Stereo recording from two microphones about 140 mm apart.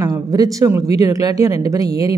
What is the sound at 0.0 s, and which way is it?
Speech, 25° right (ahead or behind).